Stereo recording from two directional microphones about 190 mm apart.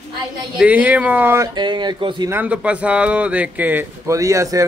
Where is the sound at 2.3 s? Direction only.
10° right (ahead or behind).